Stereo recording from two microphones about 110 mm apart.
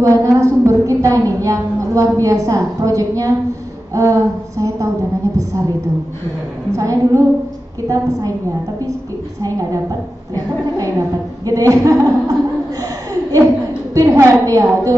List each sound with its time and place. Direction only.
0.0 s a sound: 30° right (ahead or behind)
3.9 s a woman's voice: 30° right (ahead or behind)
6.7 s a woman's voice: 30° right (ahead or behind)
9.4 s a woman's voice: 30° right (ahead or behind)
11.4 s a woman's voice: 30° right (ahead or behind)
12.8 s chuckle: 30° right (ahead or behind)
13.9 s a woman's voice: 25° right (ahead or behind)